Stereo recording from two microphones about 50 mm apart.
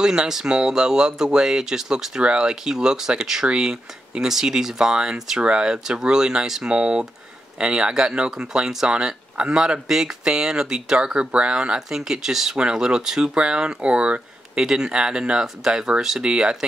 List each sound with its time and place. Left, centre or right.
0.0 s speech: centre
12.0 s speech: centre
16.2 s speech: centre